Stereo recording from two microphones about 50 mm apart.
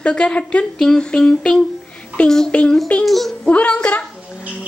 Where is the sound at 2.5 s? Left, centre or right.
Left.